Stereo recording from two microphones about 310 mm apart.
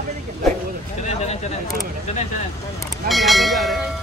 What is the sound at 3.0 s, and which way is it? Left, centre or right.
Speech, centre.